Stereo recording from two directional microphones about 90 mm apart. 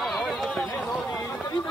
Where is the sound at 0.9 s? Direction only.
5° left (ahead or behind).